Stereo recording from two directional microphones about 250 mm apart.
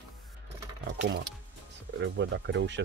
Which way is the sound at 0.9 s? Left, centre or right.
Right.